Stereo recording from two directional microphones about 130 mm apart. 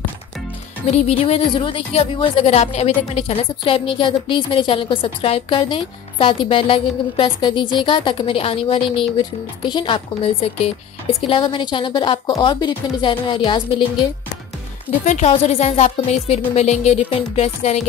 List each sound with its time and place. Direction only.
0.8 s speech: 55° left (ahead or behind); by 13.8 s 40° left (ahead or behind)
15.0 s speech: 60° left (ahead or behind)